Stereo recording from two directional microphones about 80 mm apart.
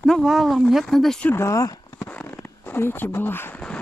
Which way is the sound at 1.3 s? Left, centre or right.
Left.